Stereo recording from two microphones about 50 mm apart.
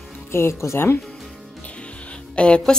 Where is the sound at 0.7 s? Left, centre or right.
Left.